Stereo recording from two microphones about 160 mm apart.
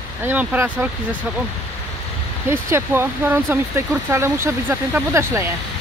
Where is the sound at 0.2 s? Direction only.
10° right (ahead or behind).